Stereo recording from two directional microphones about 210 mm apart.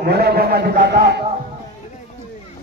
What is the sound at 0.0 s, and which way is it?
A man's voice, 45° right (ahead or behind).